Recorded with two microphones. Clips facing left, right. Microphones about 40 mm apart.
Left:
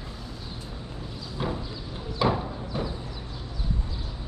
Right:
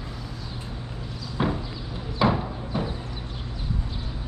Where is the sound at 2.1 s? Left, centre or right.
Centre.